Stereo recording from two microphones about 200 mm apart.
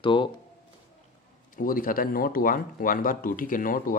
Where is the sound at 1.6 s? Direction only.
45° left (ahead or behind).